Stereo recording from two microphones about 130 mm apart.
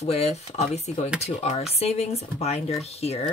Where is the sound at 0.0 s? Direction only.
55° left (ahead or behind).